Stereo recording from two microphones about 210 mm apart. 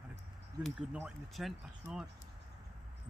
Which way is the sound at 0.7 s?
5° right (ahead or behind).